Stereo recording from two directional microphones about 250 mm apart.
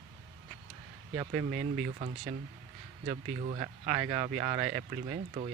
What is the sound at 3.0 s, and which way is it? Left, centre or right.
Speech, right.